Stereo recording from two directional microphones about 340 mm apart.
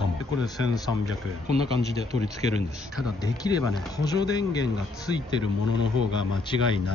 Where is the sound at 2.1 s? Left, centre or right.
Centre.